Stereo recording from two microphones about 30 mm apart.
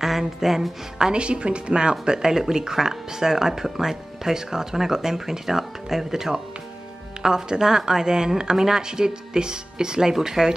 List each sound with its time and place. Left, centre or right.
0.0 s music: centre
1.1 s a woman's voice: right; by 10.5 s centre